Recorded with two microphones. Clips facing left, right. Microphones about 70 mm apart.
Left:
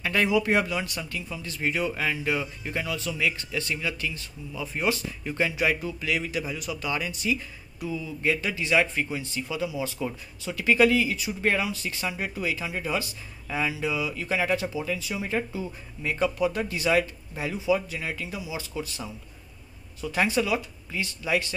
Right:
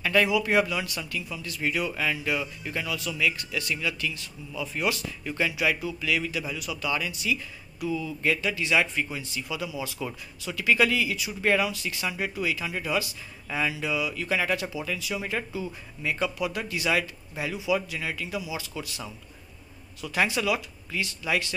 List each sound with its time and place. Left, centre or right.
0.0 s speech: left